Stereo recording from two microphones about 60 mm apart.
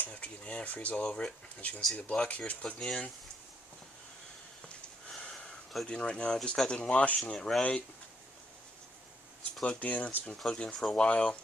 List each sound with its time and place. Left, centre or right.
0.0 s speech: left
5.1 s a sound: centre
5.9 s speech: centre
7.3 s speech: centre
9.8 s speech: left